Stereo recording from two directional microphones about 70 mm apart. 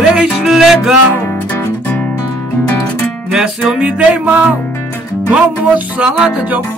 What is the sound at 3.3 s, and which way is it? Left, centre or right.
Music, centre.